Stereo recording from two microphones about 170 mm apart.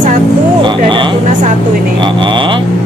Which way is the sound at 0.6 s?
30° right (ahead or behind).